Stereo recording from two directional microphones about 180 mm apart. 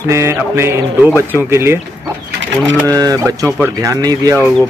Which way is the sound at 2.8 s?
20° right (ahead or behind).